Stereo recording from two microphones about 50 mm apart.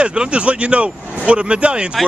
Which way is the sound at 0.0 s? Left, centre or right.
Right.